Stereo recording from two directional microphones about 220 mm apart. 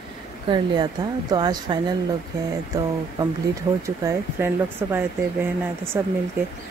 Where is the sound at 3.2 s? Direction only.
15° right (ahead or behind).